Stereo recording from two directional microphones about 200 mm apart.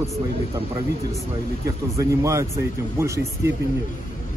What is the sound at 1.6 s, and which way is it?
Speech, 15° right (ahead or behind).